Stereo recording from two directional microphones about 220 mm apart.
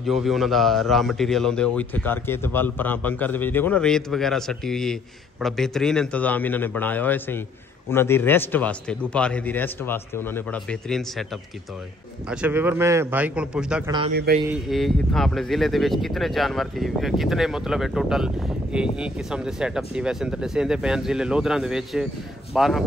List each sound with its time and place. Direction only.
0.0 s a man's voice: centre (ahead or behind)
12.3 s a man's voice: 5° right (ahead or behind)
14.1 s speech: 45° right (ahead or behind)
14.5 s a man's voice: centre (ahead or behind)